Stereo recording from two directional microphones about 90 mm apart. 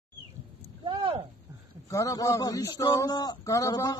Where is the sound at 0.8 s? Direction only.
70° right (ahead or behind).